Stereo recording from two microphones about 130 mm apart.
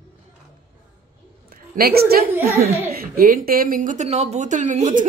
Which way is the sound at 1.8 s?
90° right.